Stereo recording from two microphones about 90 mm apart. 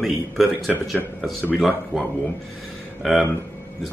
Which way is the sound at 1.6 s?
Centre (ahead or behind).